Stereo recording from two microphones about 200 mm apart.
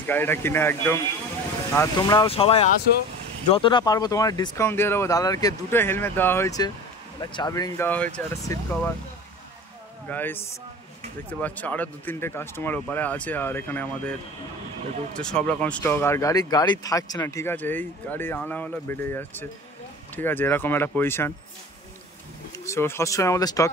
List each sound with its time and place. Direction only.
0.0 s speech: 10° left (ahead or behind)
10.0 s speech: 10° left (ahead or behind)
15.1 s speech: 5° left (ahead or behind)
22.7 s speech: 15° left (ahead or behind)